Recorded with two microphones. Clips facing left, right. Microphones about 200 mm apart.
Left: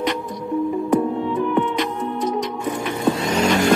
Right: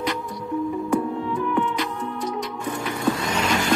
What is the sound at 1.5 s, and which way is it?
Music, 20° left (ahead or behind).